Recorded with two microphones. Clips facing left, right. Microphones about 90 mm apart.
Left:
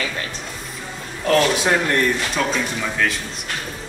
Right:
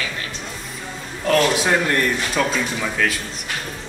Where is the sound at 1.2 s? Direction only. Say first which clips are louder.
Even; centre (ahead or behind).